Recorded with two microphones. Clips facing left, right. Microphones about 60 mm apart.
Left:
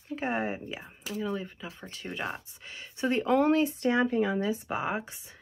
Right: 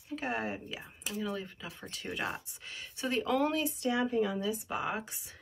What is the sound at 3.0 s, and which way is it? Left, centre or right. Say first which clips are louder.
Speech: left 5 dB; left.